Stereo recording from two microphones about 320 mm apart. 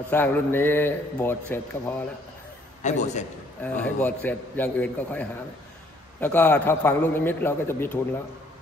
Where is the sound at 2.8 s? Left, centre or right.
Left.